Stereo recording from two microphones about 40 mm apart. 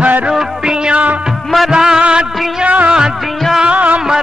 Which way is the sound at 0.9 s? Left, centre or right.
Right.